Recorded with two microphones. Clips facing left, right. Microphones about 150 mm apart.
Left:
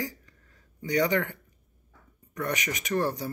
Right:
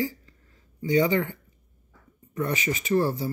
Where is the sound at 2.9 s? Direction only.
10° right (ahead or behind).